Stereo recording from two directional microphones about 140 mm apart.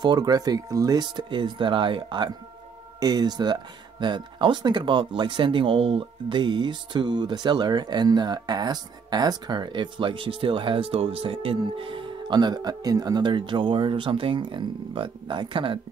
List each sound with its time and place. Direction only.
0.0 s speech: 30° right (ahead or behind)